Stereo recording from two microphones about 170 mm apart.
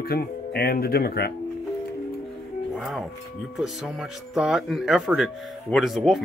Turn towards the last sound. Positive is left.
turn(degrees=0)  # may be behind; listen again after turning